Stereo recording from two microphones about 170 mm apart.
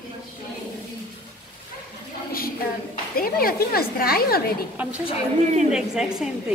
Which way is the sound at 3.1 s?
60° left (ahead or behind).